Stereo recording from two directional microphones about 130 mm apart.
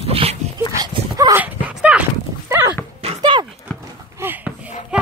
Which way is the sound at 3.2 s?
35° right (ahead or behind).